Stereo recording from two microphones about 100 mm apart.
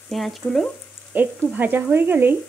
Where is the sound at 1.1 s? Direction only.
20° right (ahead or behind).